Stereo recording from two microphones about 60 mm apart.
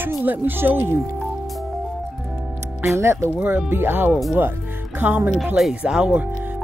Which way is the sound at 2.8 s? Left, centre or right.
Right.